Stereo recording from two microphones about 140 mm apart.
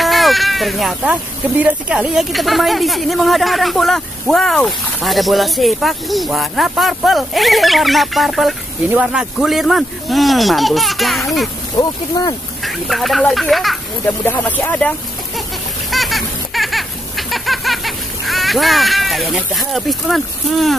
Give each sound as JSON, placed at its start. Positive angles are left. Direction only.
{"t": 0.0, "sound": "sheep", "side_deg": 0}
{"t": 1.6, "sound": "a woman's voice", "side_deg": -10}
{"t": 11.7, "sound": "speech", "side_deg": 30}
{"t": 12.6, "sound": "a woman's voice", "side_deg": 0}
{"t": 14.0, "sound": "speech", "side_deg": 15}
{"t": 15.9, "sound": "a sound", "side_deg": 0}
{"t": 17.3, "sound": "speech", "side_deg": 0}